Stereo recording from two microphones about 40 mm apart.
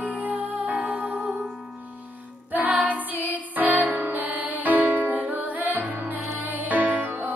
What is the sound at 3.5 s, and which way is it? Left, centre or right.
Music, right.